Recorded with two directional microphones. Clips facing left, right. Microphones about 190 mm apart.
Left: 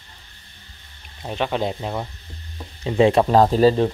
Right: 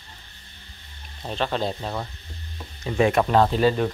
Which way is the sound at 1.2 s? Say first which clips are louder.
Left 2 dB; 10° left (ahead or behind).